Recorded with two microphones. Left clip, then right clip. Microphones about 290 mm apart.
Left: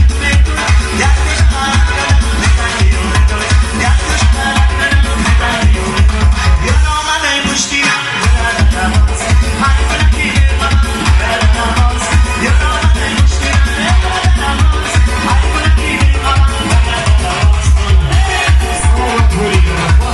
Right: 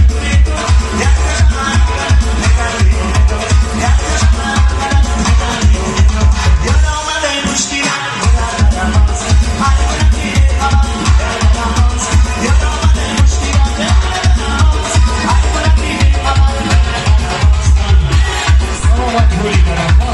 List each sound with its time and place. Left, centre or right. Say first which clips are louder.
0.6 s music: left 3 dB; right
3.4 s music: left 2 dB; right
5.9 s music: left 1 dB; right